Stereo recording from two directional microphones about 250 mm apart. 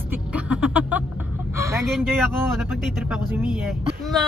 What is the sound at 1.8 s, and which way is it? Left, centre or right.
Speech, centre.